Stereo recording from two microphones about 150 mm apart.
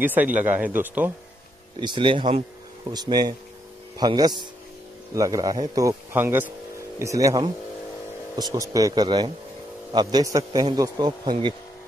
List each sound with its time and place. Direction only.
0.0 s speech: 10° right (ahead or behind)
1.8 s a man's voice: 30° right (ahead or behind)